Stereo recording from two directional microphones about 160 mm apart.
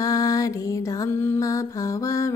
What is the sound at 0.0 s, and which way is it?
Mantra, 20° left (ahead or behind).